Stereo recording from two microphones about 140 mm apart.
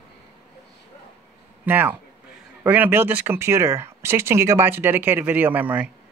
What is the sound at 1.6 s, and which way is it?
Speech, 15° right (ahead or behind).